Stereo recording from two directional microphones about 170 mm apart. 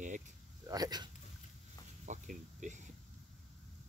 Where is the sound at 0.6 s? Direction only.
25° right (ahead or behind).